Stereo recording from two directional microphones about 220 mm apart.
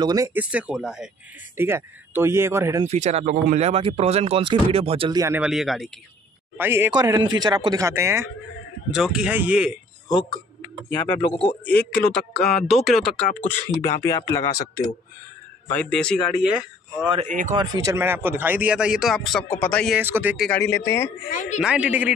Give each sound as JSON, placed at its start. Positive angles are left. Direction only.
{"t": 0.0, "sound": "speech", "side_deg": -15}
{"t": 2.9, "sound": "speech", "side_deg": -30}
{"t": 5.2, "sound": "speech", "side_deg": -5}
{"t": 10.0, "sound": "speech", "side_deg": 20}
{"t": 10.9, "sound": "speech", "side_deg": 10}
{"t": 11.1, "sound": "a man's voice", "side_deg": 25}
{"t": 11.6, "sound": "speech", "side_deg": 5}
{"t": 13.5, "sound": "speech", "side_deg": 15}
{"t": 15.7, "sound": "speech", "side_deg": 5}
{"t": 17.6, "sound": "speech", "side_deg": -15}
{"t": 20.0, "sound": "speech", "side_deg": -10}
{"t": 20.4, "sound": "speech", "side_deg": 10}
{"t": 21.3, "sound": "a woman's voice", "side_deg": 35}
{"t": 21.6, "sound": "speech", "side_deg": -5}